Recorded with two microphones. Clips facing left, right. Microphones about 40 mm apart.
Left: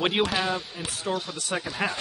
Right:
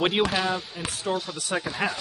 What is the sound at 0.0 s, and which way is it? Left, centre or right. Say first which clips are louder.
Speech: right 1 dB; centre.